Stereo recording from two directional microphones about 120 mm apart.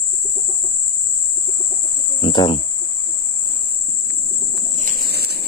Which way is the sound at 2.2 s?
40° left (ahead or behind).